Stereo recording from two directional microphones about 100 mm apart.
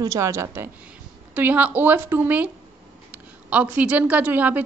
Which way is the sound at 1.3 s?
15° right (ahead or behind).